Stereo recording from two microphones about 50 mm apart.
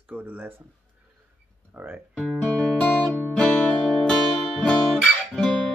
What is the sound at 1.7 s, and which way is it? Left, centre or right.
Speech, right.